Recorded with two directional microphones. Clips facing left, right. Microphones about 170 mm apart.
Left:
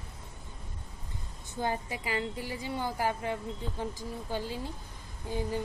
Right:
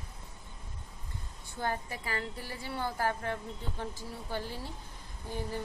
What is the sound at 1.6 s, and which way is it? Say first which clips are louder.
A woman's voice: left 2 dB; 15° left (ahead or behind).